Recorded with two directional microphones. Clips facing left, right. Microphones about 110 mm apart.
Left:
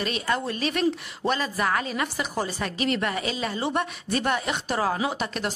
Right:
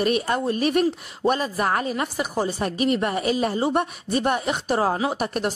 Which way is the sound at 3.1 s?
45° right (ahead or behind).